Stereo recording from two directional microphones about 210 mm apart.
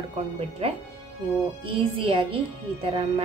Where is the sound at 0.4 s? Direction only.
30° right (ahead or behind).